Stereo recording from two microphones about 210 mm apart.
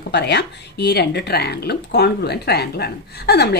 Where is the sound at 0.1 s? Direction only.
55° left (ahead or behind).